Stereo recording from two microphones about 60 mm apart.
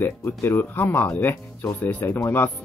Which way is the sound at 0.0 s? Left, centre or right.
Left.